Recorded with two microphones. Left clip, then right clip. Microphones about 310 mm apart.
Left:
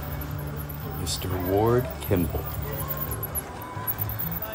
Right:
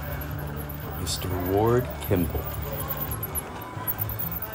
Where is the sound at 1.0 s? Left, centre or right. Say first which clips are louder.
Even; centre.